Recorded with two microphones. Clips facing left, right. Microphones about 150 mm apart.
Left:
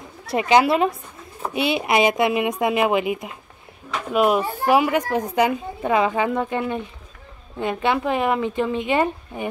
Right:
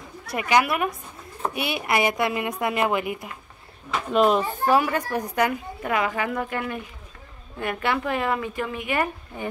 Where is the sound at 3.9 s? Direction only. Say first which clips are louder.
Left 1 dB; 5° left (ahead or behind).